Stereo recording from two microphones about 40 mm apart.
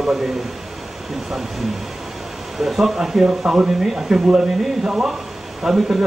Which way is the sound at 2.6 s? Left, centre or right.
Centre.